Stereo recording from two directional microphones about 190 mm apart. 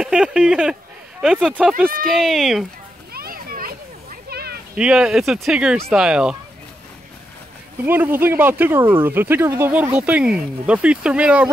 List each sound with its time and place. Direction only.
0.0 s speech: 5° right (ahead or behind)
3.1 s children playing: 50° right (ahead or behind)
4.7 s speech: 5° right (ahead or behind)
7.8 s speech: 10° right (ahead or behind)